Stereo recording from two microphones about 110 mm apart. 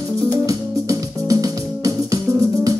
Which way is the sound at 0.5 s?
35° right (ahead or behind).